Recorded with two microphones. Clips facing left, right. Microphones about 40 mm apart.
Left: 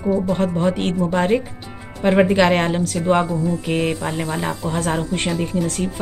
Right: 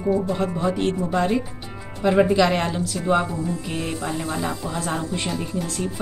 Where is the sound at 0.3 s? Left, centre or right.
Left.